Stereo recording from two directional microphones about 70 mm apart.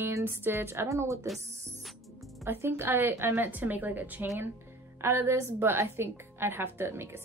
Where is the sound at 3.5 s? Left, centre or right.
Right.